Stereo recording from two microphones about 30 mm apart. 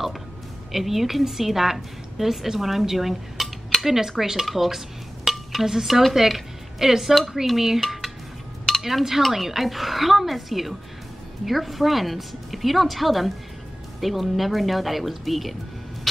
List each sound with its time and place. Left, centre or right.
0.7 s a woman's voice: centre
4.6 s dishes: centre
5.3 s a sound: centre
5.7 s a woman's voice: centre
7.8 s dishes: centre
9.3 s a woman's voice: centre